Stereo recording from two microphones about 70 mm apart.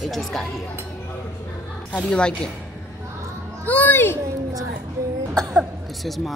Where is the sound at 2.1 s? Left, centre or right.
Centre.